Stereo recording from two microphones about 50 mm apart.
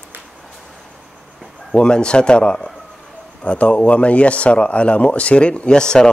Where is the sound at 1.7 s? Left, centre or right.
Centre.